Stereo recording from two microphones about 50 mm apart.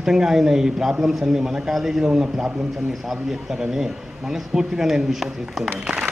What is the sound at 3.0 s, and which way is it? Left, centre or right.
Speech, centre.